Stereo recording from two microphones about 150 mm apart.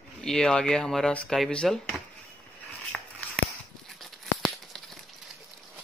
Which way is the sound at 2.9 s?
5° left (ahead or behind).